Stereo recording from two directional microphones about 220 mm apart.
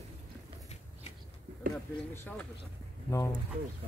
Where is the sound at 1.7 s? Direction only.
10° left (ahead or behind).